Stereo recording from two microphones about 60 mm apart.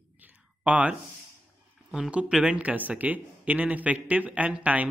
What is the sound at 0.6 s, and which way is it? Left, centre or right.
Speech, right.